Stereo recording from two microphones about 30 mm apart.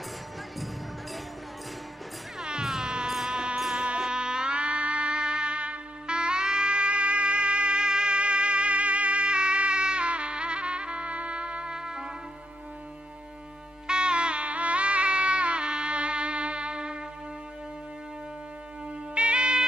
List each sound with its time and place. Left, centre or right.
2.6 s music: centre
3.7 s music: right
6.0 s music: right
11.7 s music: right
13.8 s music: right
19.1 s music: right